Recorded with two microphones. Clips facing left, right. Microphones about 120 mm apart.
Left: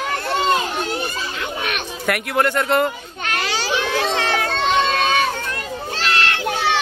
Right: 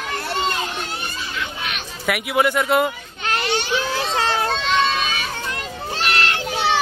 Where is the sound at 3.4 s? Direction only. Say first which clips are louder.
Left 1 dB; 90° left.